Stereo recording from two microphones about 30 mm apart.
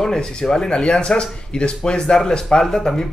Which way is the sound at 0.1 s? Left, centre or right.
Left.